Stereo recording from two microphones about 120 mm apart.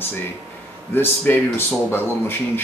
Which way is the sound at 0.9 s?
15° left (ahead or behind).